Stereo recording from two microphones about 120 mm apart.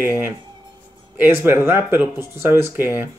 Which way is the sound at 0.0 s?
20° right (ahead or behind).